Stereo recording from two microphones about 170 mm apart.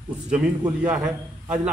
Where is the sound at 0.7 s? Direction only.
10° right (ahead or behind).